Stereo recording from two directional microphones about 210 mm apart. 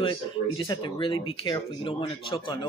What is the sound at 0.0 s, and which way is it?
Speech, 20° left (ahead or behind).